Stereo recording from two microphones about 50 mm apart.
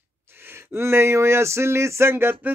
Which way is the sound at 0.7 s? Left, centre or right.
Right.